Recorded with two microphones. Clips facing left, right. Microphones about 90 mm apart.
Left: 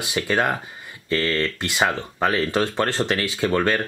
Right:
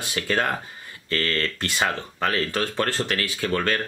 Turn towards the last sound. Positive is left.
turn(degrees=20)  # may be behind; listen again after turning